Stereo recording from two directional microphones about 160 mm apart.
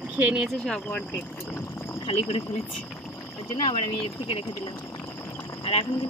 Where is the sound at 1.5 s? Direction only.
15° left (ahead or behind).